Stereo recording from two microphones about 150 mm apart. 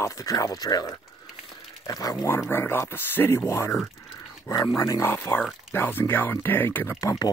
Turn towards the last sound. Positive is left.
turn(degrees=20)  # may be behind; listen again after turning